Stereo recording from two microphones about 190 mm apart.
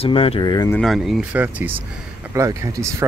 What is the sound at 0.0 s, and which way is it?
Speech, 30° left (ahead or behind).